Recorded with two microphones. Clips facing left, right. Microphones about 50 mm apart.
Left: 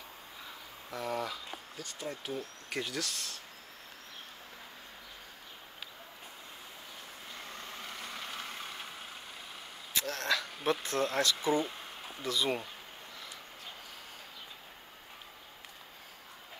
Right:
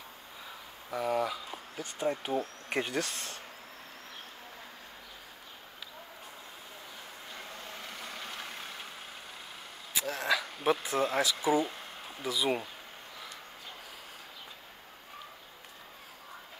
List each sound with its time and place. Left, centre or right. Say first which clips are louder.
0.8 s speech: right 5 dB; centre
1.8 s speech: right 9 dB; right
7.9 s vehicle: even; centre
9.9 s a sound: right 2 dB; centre
12.2 s speech: right 2 dB; centre